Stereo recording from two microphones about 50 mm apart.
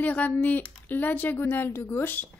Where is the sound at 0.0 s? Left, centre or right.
Left.